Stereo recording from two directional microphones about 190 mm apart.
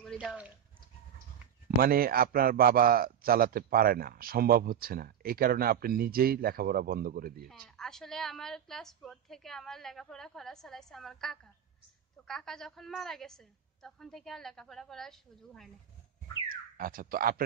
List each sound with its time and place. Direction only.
0.0 s a sound: centre (ahead or behind)
1.8 s a man's voice: 50° right (ahead or behind)
7.4 s a woman's voice: centre (ahead or behind)
16.4 s speech: 50° right (ahead or behind)